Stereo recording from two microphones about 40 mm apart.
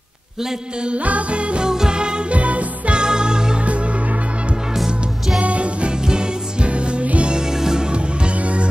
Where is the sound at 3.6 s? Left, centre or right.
Right.